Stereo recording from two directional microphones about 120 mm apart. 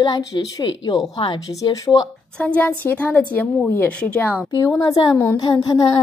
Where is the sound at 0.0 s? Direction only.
35° left (ahead or behind).